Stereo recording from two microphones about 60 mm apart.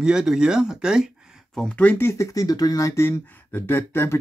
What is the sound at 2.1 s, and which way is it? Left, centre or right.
Speech, left.